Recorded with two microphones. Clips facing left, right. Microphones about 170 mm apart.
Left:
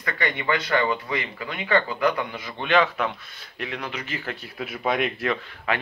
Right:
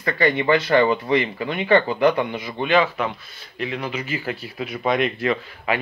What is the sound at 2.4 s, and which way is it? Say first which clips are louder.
Speech: right 1 dB; 10° right (ahead or behind).